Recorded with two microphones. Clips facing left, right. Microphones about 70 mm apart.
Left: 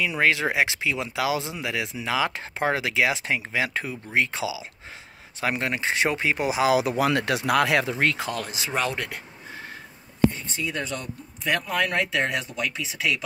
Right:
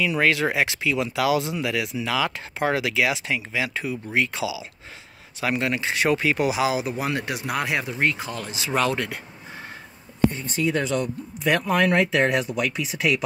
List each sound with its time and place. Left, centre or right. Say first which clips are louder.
0.0 s speech: right 1 dB; centre
6.7 s speech: left 4 dB; left
8.7 s speech: right 4 dB; centre
10.5 s speech: right 6 dB; right
11.4 s speech: right 4 dB; right
12.2 s speech: right 5 dB; right